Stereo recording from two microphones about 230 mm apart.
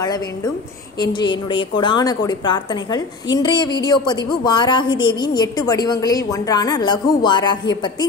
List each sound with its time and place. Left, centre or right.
0.0 s a woman's voice: centre